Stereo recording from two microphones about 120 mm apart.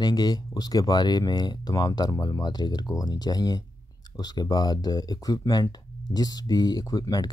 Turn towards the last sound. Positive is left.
turn(degrees=30)  # may be behind; listen again after turning